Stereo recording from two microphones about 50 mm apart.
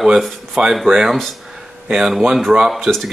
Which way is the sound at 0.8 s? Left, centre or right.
Centre.